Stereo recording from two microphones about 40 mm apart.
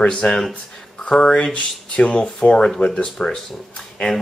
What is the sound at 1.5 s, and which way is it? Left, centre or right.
Speech, left.